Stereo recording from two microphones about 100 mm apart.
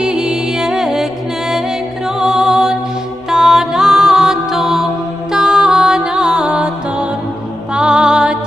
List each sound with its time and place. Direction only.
0.0 s music: 5° right (ahead or behind)
2.1 s music: 5° right (ahead or behind)